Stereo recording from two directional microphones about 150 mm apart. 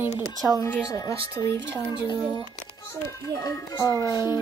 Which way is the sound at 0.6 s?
10° left (ahead or behind).